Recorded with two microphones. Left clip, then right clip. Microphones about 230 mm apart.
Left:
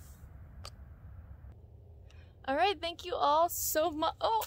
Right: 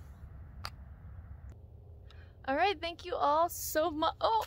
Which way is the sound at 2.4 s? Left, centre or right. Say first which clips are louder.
Even; centre.